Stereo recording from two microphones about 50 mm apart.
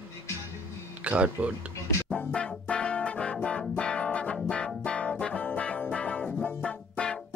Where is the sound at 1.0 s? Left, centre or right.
Right.